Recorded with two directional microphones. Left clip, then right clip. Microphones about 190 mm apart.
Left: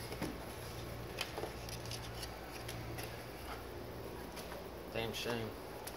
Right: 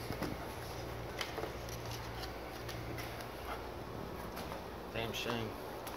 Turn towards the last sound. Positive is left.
turn(degrees=5)  # may be behind; listen again after turning